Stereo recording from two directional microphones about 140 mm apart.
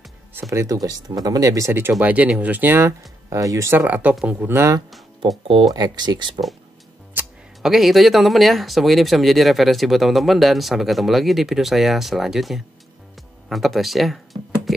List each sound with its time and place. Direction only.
0.3 s speech: 20° right (ahead or behind)
5.5 s speech: 35° right (ahead or behind)
7.2 s speech: 5° right (ahead or behind)